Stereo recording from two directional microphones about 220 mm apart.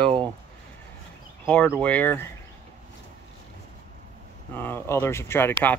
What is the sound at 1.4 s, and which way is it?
Speech, 5° left (ahead or behind).